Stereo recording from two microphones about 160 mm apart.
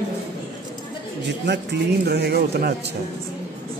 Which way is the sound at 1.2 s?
90° right.